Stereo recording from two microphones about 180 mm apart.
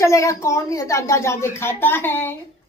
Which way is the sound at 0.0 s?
15° left (ahead or behind).